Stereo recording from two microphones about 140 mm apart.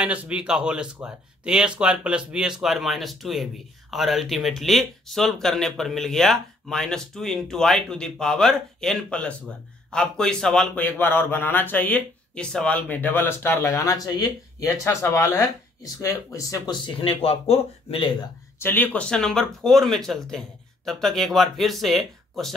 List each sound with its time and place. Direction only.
0.0 s speech: 10° right (ahead or behind); by 18.3 s 35° left (ahead or behind)
18.6 s speech: 15° left (ahead or behind)